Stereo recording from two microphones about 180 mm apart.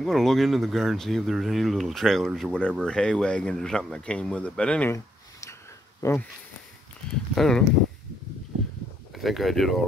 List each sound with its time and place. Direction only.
0.0 s speech: centre (ahead or behind)
7.3 s speech: centre (ahead or behind)
9.1 s speech: centre (ahead or behind)